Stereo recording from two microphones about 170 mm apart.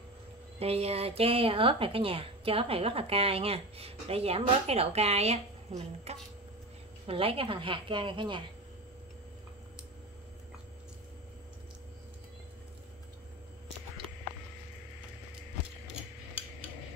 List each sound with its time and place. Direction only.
0.6 s a woman's voice: 35° right (ahead or behind)